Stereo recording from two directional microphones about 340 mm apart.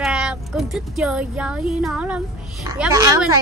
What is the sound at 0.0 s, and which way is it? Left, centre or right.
A child's voice, centre.